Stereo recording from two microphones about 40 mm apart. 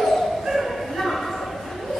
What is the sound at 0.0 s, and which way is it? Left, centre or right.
Bow-wow, centre.